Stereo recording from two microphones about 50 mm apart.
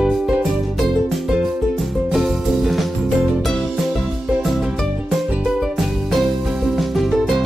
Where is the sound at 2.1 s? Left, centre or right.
Centre.